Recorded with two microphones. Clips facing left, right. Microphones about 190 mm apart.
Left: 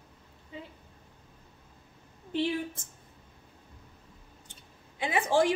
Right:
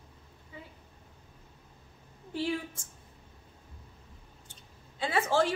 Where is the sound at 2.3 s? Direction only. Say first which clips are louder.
Left 3 dB; 20° left (ahead or behind).